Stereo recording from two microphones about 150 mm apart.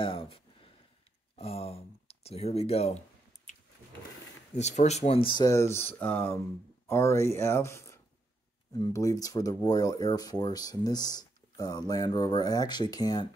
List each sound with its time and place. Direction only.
0.0 s speech: 35° left (ahead or behind)
3.5 s a sound: 55° left (ahead or behind)
4.6 s speech: 50° left (ahead or behind)
5.4 s speech: 20° left (ahead or behind)